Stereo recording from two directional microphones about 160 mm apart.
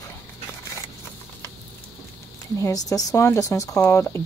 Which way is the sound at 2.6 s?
20° left (ahead or behind).